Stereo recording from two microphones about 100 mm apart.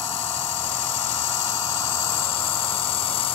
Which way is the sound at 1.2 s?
30° left (ahead or behind).